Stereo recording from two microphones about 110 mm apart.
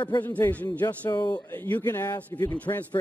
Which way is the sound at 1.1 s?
40° left (ahead or behind).